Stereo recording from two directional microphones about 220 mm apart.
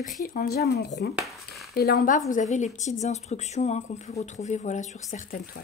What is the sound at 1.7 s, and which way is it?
Speech, 40° left (ahead or behind).